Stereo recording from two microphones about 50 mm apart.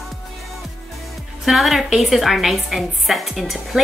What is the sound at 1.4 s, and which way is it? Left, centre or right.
A woman's voice, centre.